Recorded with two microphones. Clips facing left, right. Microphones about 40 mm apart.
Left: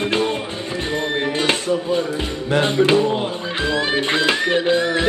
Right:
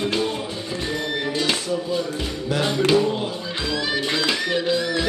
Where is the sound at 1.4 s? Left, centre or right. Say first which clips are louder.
Left 4 dB; left.